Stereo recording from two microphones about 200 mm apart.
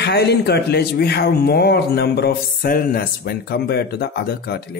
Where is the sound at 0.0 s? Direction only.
55° left (ahead or behind).